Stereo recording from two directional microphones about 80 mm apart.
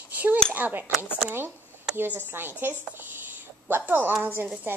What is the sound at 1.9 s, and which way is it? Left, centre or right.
A child's voice, right.